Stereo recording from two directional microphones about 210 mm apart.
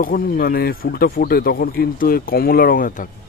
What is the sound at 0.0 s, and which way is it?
Speech, 45° left (ahead or behind).